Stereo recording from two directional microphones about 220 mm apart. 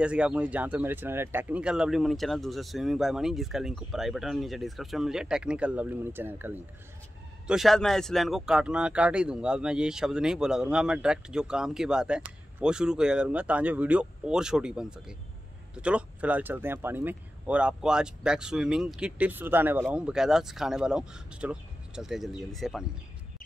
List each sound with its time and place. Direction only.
0.0 s speech: 5° right (ahead or behind)